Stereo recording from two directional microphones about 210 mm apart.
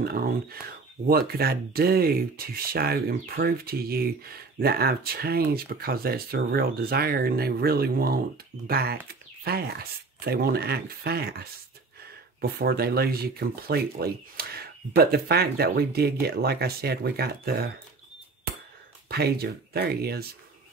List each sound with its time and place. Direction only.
0.0 s speech: 45° right (ahead or behind)
19.0 s speech: 50° right (ahead or behind)